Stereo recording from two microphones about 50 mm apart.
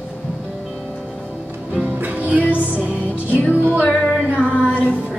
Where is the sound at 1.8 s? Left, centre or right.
Right.